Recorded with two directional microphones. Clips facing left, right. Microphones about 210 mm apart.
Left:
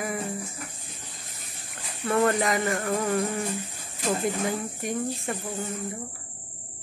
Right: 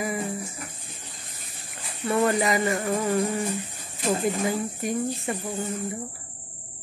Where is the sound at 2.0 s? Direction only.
5° right (ahead or behind).